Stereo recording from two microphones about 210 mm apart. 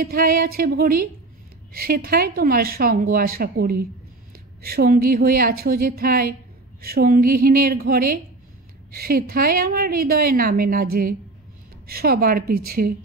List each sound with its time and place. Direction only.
0.0 s a woman's voice: 45° right (ahead or behind)